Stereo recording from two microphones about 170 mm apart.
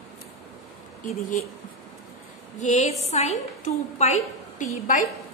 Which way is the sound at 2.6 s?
45° left (ahead or behind).